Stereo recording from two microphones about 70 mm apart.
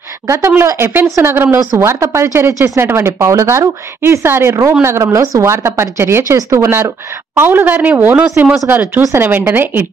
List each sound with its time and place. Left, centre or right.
0.6 s a woman's voice: right